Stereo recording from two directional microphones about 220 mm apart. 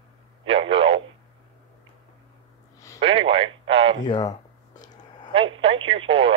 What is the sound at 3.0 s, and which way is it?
Radio, 25° right (ahead or behind).